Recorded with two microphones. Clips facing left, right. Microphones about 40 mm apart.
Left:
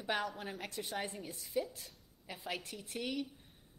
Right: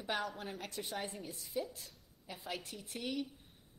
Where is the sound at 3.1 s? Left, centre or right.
Centre.